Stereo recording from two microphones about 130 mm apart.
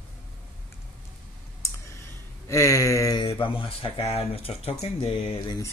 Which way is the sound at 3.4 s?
45° left (ahead or behind).